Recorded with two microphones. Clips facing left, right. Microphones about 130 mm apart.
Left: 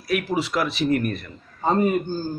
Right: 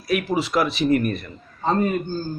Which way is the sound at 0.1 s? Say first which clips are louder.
Right 2 dB; 20° right (ahead or behind).